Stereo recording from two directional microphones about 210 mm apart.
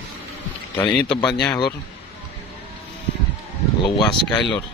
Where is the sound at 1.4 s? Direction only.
20° left (ahead or behind).